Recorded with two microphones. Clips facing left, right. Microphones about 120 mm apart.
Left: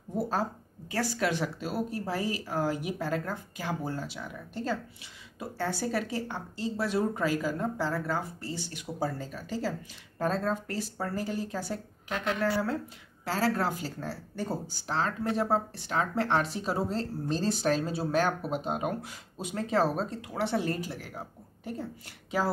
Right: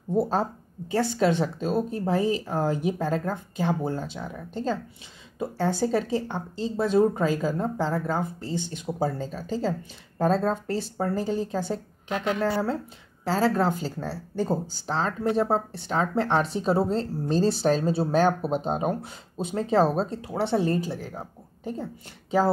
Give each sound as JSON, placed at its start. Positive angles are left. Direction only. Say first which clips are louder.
{"t": 0.2, "sound": "a woman's voice", "louder": "right 4 dB", "side_deg": -25}